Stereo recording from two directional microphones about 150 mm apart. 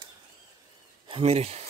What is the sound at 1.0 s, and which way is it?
Speech, 40° right (ahead or behind).